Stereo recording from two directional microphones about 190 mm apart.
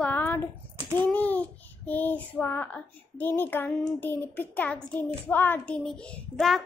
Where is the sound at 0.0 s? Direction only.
10° left (ahead or behind).